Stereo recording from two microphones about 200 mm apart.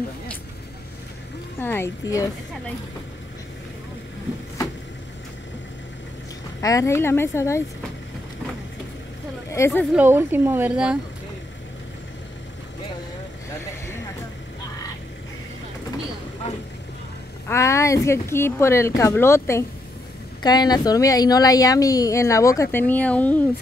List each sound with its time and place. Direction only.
1.6 s a woman's voice: 10° left (ahead or behind)
6.6 s a woman's voice: 15° left (ahead or behind)
9.5 s speech: 10° left (ahead or behind)
9.9 s speech: 10° right (ahead or behind)
17.5 s a woman's voice: 15° left (ahead or behind)